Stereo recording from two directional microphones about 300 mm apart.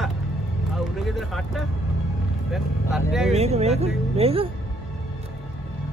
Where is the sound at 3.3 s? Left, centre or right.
Right.